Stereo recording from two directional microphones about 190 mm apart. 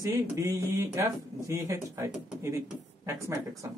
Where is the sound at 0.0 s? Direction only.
15° right (ahead or behind).